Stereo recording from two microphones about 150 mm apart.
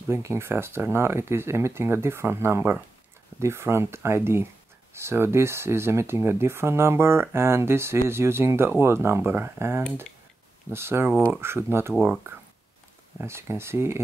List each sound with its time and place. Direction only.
0.1 s speech: 15° right (ahead or behind)